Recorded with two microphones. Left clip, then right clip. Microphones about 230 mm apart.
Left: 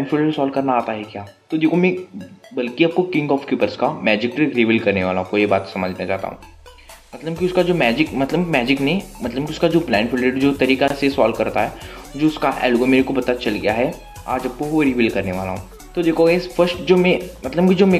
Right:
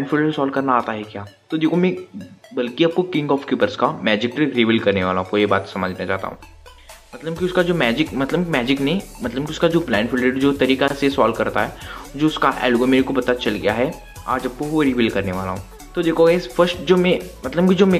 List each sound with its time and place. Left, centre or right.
0.1 s speech: centre
7.4 s speech: centre
14.3 s speech: centre
14.8 s speech: centre
15.3 s speech: centre
15.9 s speech: centre